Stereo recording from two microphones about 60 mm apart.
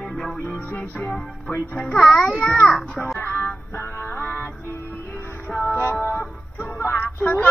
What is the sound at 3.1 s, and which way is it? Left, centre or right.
Music, left.